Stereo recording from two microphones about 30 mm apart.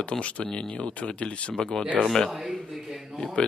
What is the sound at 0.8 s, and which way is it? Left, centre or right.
Speech, left.